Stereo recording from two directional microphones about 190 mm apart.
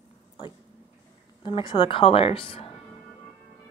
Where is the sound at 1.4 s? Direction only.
25° left (ahead or behind).